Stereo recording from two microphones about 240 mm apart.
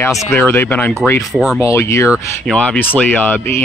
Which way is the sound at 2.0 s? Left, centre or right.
Centre.